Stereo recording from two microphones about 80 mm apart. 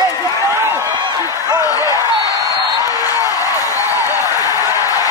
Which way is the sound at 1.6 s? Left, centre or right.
Left.